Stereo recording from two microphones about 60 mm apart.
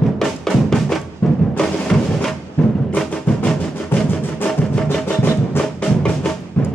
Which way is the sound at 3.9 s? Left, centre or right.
Left.